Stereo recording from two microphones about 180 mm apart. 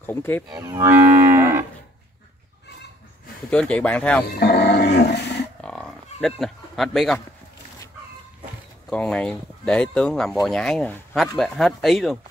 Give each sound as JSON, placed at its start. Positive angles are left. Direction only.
{"t": 0.0, "sound": "speech", "side_deg": 10}
{"t": 0.5, "sound": "livestock", "side_deg": -15}
{"t": 3.4, "sound": "speech", "side_deg": 5}
{"t": 4.4, "sound": "dog", "side_deg": 65}
{"t": 5.6, "sound": "a sound", "side_deg": 5}
{"t": 8.9, "sound": "speech", "side_deg": 5}